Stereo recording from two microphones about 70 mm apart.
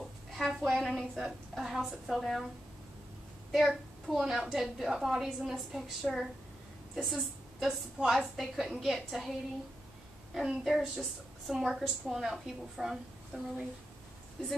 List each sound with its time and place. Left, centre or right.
0.4 s a woman's voice: centre
3.5 s a woman's voice: centre
10.6 s a woman's voice: centre